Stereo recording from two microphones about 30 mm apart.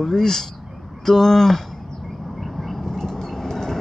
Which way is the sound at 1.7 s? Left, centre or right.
Centre.